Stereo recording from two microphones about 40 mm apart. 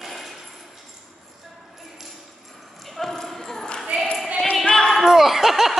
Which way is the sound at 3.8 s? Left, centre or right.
Centre.